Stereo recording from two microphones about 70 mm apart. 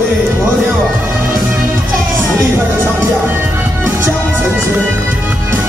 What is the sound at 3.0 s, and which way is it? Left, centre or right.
Music, right.